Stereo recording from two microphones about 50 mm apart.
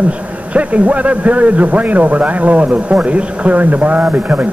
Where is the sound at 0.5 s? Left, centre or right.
Right.